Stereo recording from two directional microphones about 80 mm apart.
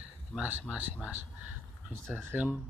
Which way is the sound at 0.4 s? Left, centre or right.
Right.